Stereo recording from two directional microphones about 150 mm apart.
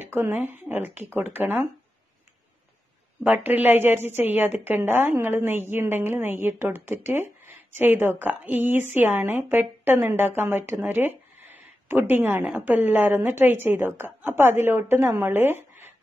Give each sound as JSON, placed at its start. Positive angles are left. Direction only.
{"t": 0.0, "sound": "a woman's voice", "side_deg": -15}
{"t": 3.3, "sound": "a woman's voice", "side_deg": -10}